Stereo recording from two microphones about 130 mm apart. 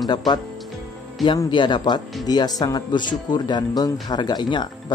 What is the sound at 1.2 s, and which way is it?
Speech, 35° left (ahead or behind).